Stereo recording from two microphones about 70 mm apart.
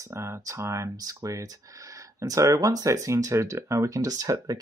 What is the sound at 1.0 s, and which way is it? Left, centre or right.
Speech, right.